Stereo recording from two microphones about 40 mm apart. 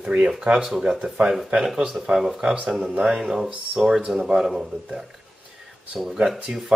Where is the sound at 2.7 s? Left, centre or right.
Centre.